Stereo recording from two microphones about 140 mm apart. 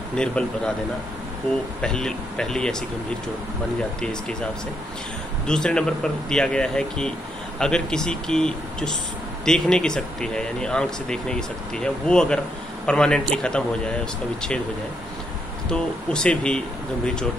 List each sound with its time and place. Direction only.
0.1 s speech: 5° left (ahead or behind)
1.8 s speech: 5° left (ahead or behind)
4.0 s speech: 5° left (ahead or behind)
5.5 s speech: 5° left (ahead or behind)
15.7 s speech: 5° left (ahead or behind)